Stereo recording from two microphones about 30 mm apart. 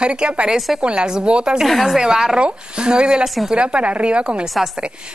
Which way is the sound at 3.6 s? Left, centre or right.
Right.